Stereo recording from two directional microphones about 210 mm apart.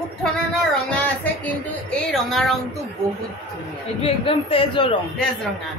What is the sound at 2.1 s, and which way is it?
Speech, centre (ahead or behind).